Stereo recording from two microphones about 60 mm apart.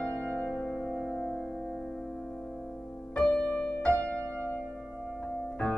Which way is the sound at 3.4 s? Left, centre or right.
Centre.